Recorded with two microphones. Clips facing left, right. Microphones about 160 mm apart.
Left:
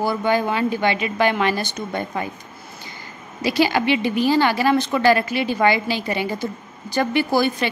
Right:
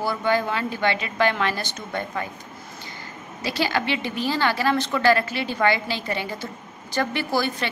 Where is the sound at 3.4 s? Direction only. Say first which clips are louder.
Left 6 dB; 15° left (ahead or behind).